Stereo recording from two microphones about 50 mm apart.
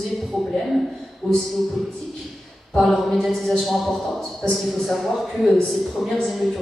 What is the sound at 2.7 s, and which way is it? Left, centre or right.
A man's voice, centre.